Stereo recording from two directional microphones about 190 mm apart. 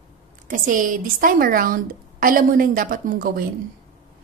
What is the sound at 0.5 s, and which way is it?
A woman's voice, 45° right (ahead or behind).